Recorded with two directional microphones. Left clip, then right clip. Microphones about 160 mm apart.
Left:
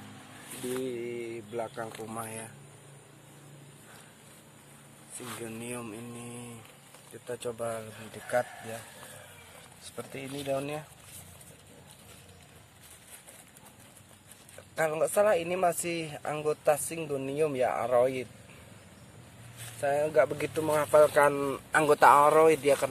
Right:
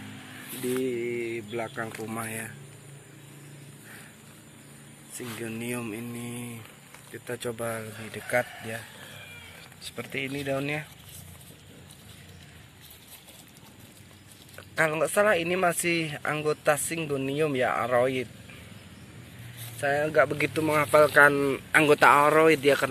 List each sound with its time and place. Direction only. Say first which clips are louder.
0.7 s speech: right 6 dB; 5° left (ahead or behind)
5.2 s speech: right 4 dB; centre (ahead or behind); by 8.5 s 20° right (ahead or behind)
9.9 s speech: right 6 dB; centre (ahead or behind)
14.8 s speech: right 2 dB; 5° left (ahead or behind)
19.8 s speech: right 2 dB; 10° left (ahead or behind)